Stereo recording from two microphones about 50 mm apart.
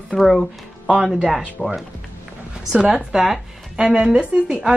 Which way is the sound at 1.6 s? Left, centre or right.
Centre.